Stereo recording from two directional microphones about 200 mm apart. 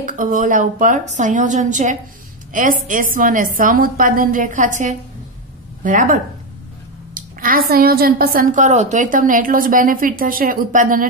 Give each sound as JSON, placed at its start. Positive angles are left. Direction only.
{"t": 0.0, "sound": "a woman's voice", "side_deg": -40}
{"t": 7.2, "sound": "a woman's voice", "side_deg": -45}